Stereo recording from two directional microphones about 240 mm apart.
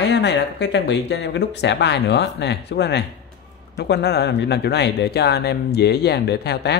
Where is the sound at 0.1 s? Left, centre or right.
Left.